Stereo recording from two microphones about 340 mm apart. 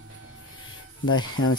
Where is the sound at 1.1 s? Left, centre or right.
Left.